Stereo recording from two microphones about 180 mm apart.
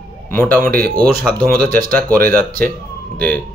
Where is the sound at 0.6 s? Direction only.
50° right (ahead or behind).